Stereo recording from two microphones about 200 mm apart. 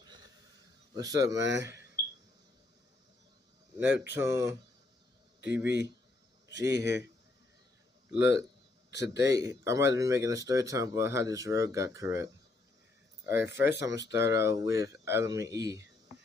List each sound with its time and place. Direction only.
0.9 s speech: 20° right (ahead or behind)
1.4 s speech: 65° right (ahead or behind)
3.7 s speech: 10° right (ahead or behind)
8.1 s speech: 10° right (ahead or behind)